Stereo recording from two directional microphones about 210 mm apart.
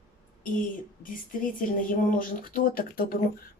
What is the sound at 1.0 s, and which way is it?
Speech, 40° left (ahead or behind).